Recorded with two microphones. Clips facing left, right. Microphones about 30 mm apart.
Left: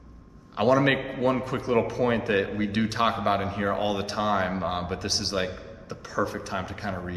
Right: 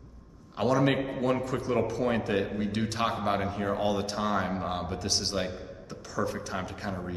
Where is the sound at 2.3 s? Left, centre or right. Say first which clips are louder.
Left 4 dB; left.